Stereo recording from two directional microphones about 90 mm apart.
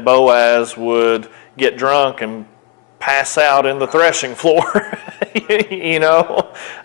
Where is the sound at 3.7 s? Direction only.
25° left (ahead or behind).